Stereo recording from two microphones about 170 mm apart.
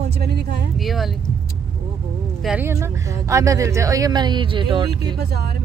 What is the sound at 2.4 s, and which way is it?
Speech, 10° right (ahead or behind).